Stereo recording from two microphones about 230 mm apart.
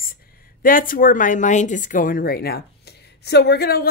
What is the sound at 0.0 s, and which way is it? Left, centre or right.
A woman's voice, left.